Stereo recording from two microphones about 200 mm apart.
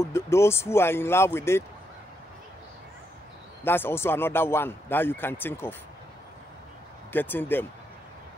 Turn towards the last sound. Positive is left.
turn(degrees=10)  # may be behind; listen again after turning